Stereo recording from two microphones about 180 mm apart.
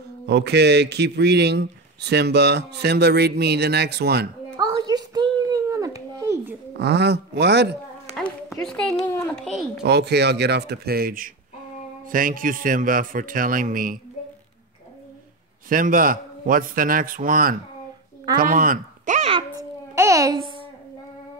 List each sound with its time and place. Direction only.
0.3 s a man's voice: 70° right (ahead or behind)
4.6 s a sound: 20° right (ahead or behind)
6.8 s a man's voice: 65° right (ahead or behind)
8.1 s a sound: centre (ahead or behind)
9.3 s a child's voice: centre (ahead or behind)
9.8 s a man's voice: 65° right (ahead or behind); by 13.9 s 50° right (ahead or behind)
15.7 s a man's voice: 50° right (ahead or behind)
18.4 s a sound: 50° right (ahead or behind)
19.5 s babbling: 15° right (ahead or behind)